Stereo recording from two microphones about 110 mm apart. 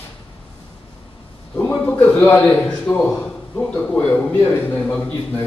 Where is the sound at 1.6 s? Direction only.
15° left (ahead or behind).